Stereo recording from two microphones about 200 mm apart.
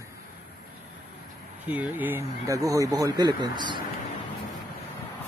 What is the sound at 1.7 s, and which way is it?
Speech, 10° right (ahead or behind).